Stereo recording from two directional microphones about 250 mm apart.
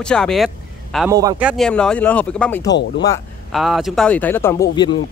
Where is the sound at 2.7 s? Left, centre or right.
Left.